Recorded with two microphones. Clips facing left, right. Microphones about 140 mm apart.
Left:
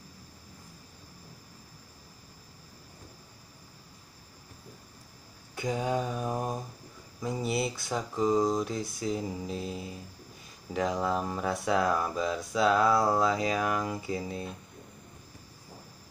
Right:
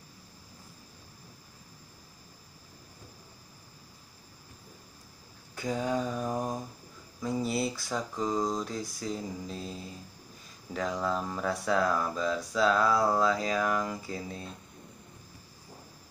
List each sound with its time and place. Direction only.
5.6 s mantra: 5° left (ahead or behind)
8.4 s speech: 5° left (ahead or behind)
10.7 s speech: 20° left (ahead or behind)